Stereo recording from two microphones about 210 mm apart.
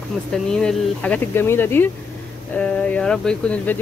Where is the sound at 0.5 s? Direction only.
5° left (ahead or behind).